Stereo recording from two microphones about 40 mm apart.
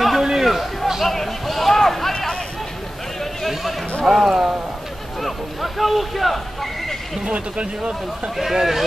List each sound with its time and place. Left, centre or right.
0.0 s a sound: centre
4.0 s speech: centre
7.2 s speech: right
8.4 s speech: centre